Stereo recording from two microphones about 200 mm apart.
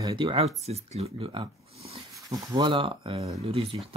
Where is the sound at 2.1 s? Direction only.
15° right (ahead or behind).